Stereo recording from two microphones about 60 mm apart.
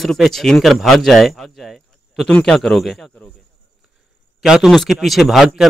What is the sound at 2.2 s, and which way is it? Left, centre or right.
Speech, centre.